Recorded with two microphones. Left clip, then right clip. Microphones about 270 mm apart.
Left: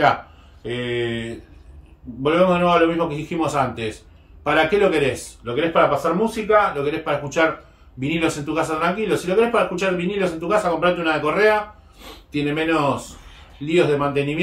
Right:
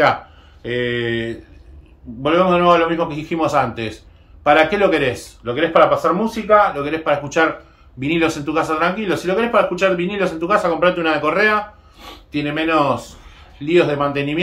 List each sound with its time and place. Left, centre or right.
0.6 s speech: centre